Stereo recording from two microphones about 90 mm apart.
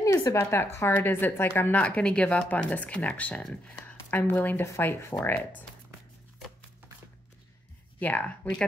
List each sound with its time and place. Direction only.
0.0 s speech: 35° left (ahead or behind); by 5.7 s 20° left (ahead or behind)
8.0 s speech: 15° left (ahead or behind)